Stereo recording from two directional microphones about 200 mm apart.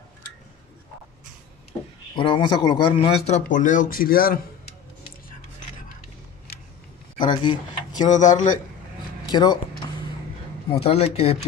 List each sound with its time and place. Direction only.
2.1 s speech: 25° left (ahead or behind); by 4.4 s 45° left (ahead or behind)
7.2 s a sound: 25° left (ahead or behind)
8.1 s speech: 40° left (ahead or behind)
9.3 s speech: 20° left (ahead or behind)
10.7 s speech: 30° left (ahead or behind)